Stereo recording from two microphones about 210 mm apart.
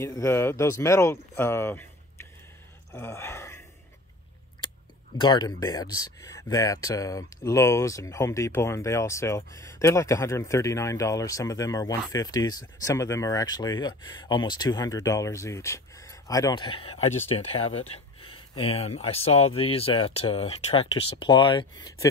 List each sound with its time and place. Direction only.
0.0 s speech: 15° left (ahead or behind)
2.9 s gasp: 10° left (ahead or behind)
5.1 s speech: 20° left (ahead or behind)